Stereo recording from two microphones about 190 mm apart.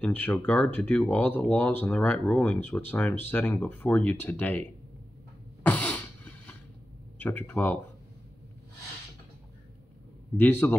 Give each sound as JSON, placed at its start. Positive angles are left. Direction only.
{"t": 0.0, "sound": "speech", "side_deg": 10}
{"t": 5.6, "sound": "a sound", "side_deg": 10}
{"t": 7.2, "sound": "speech", "side_deg": 10}
{"t": 10.3, "sound": "speech", "side_deg": 10}